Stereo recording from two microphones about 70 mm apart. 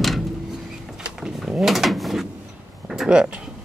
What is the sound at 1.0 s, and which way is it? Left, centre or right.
Drawer open or close, centre.